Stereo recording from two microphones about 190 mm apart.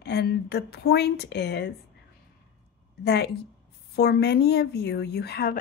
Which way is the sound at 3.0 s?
60° left (ahead or behind).